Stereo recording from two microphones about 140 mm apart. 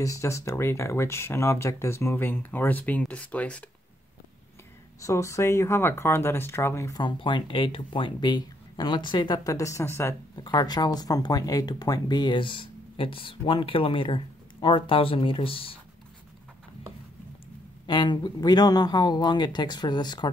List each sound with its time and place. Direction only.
0.0 s speech: 20° left (ahead or behind)
5.0 s speech: 20° left (ahead or behind); by 15.8 s 40° left (ahead or behind)
17.8 s speech: 35° left (ahead or behind)